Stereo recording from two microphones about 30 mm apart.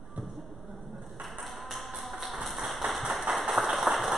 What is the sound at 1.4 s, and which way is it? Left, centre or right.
Tap, centre.